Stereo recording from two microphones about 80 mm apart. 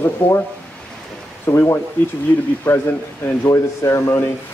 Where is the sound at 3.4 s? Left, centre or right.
Left.